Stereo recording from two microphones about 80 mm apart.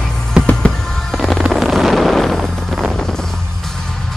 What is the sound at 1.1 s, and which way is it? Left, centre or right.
Wind noise, centre.